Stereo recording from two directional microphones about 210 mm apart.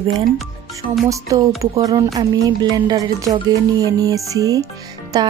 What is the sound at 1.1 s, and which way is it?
Speech, 15° right (ahead or behind).